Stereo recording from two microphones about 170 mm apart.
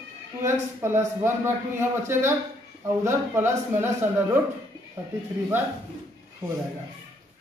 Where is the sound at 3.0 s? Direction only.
15° right (ahead or behind).